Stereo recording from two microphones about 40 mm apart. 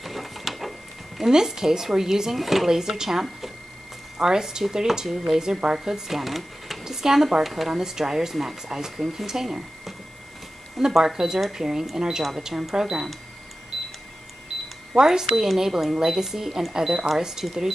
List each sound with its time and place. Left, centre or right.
0.0 s a sound: centre
1.2 s speech: centre
2.3 s speech: centre
6.8 s speech: centre
14.5 s camera: centre
15.0 s speech: centre